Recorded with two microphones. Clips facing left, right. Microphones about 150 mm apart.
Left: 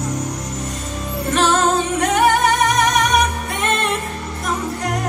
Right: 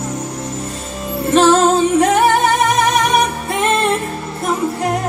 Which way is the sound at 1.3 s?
25° right (ahead or behind).